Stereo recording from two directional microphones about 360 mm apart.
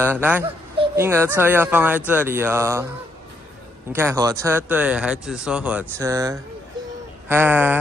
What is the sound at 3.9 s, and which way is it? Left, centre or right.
Speech, centre.